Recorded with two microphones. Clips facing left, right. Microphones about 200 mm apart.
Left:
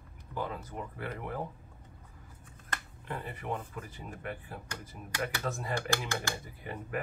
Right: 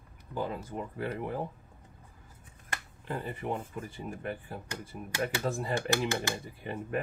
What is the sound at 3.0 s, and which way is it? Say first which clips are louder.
Speech: right 4 dB; 30° right (ahead or behind).